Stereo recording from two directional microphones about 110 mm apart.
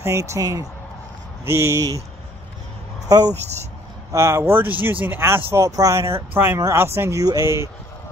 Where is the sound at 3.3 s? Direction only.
90° right.